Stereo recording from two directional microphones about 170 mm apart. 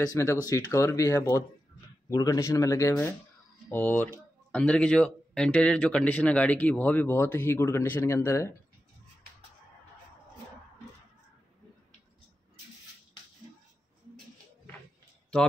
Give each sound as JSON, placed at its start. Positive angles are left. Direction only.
{"t": 0.0, "sound": "speech", "side_deg": 20}